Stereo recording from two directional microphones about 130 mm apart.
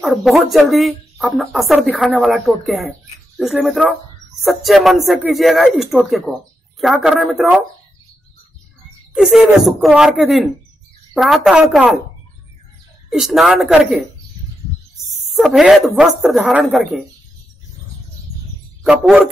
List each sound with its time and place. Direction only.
0.0 s speech: centre (ahead or behind)
9.1 s speech: 5° right (ahead or behind)
13.1 s speech: centre (ahead or behind)
15.3 s speech: centre (ahead or behind)
18.9 s speech: 5° right (ahead or behind)